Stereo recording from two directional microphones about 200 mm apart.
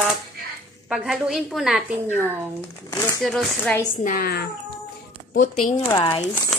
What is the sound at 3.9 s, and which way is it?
Speech, 45° left (ahead or behind).